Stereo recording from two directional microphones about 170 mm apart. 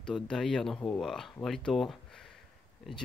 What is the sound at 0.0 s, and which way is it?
Speech, 5° left (ahead or behind).